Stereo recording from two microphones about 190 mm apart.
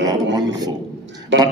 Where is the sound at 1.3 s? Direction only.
70° right (ahead or behind).